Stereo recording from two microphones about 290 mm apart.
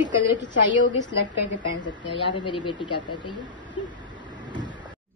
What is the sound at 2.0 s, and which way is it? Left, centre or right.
Speech, centre.